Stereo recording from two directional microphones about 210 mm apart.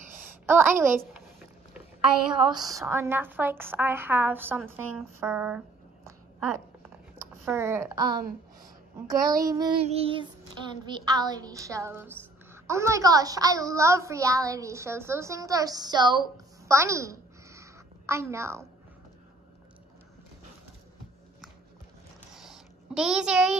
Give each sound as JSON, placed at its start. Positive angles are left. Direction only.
{"t": 0.5, "sound": "a woman's voice", "side_deg": -10}
{"t": 2.3, "sound": "a woman's voice", "side_deg": -15}
{"t": 7.4, "sound": "a woman's voice", "side_deg": -10}
{"t": 9.2, "sound": "child singing", "side_deg": -15}
{"t": 10.9, "sound": "a woman's voice", "side_deg": -20}
{"t": 22.3, "sound": "a sound", "side_deg": 0}